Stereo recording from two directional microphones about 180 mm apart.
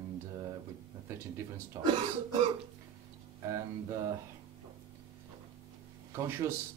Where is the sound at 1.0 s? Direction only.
15° right (ahead or behind).